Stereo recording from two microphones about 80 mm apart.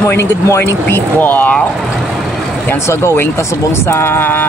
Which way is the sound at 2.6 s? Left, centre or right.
Left.